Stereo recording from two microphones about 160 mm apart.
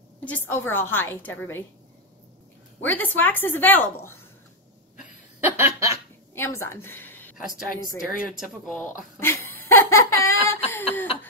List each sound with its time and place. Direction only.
0.2 s a woman's voice: 10° left (ahead or behind)
2.8 s a woman's voice: 10° left (ahead or behind)
5.4 s chuckle: 20° right (ahead or behind)
6.3 s a woman's voice: 15° left (ahead or behind)
8.2 s speech: centre (ahead or behind)
9.2 s laughter: 15° left (ahead or behind)